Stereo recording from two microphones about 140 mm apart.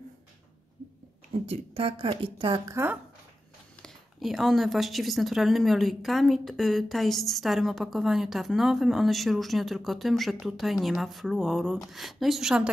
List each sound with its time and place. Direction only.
1.3 s speech: 45° right (ahead or behind)
2.6 s speech: 20° right (ahead or behind)
3.8 s speech: centre (ahead or behind)